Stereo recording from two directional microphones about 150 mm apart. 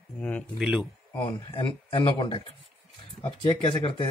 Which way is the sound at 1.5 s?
35° left (ahead or behind).